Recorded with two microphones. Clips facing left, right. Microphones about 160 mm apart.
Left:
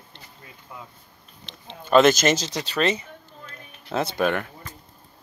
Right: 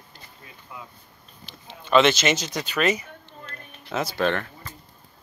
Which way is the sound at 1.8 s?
45° left (ahead or behind).